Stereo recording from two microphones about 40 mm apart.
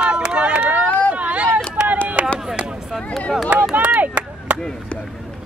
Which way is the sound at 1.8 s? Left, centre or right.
Right.